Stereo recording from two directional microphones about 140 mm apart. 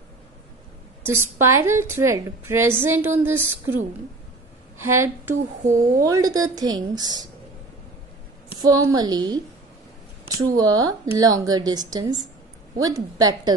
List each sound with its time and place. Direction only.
1.2 s a woman's voice: 20° right (ahead or behind)
4.8 s a woman's voice: 15° right (ahead or behind)
8.5 s a woman's voice: 25° right (ahead or behind)